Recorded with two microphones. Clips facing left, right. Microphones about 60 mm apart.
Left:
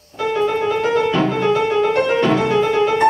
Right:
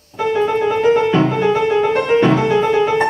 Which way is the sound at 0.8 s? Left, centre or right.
Right.